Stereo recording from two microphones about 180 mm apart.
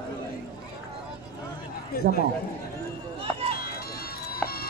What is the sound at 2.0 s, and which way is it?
Speech, 55° left (ahead or behind).